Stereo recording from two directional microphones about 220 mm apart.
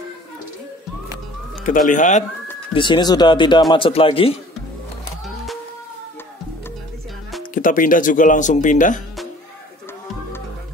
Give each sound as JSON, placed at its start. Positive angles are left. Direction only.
{"t": 1.6, "sound": "speech", "side_deg": 35}
{"t": 2.7, "sound": "speech", "side_deg": 20}
{"t": 5.2, "sound": "music", "side_deg": 0}
{"t": 7.5, "sound": "speech", "side_deg": 40}